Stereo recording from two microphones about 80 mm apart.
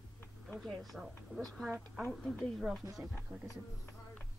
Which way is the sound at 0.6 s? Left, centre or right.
Centre.